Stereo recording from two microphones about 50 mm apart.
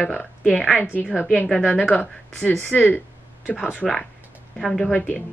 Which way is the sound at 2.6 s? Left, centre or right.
Left.